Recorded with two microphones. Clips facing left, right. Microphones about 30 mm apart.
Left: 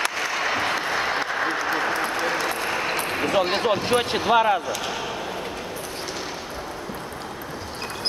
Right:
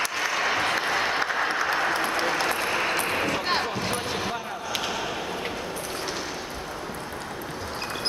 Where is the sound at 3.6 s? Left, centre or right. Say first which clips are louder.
Left 7 dB; left.